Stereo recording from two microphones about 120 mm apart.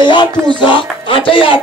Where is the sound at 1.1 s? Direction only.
45° left (ahead or behind).